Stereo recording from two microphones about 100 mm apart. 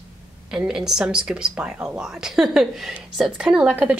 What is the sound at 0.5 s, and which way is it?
Speech, 5° right (ahead or behind).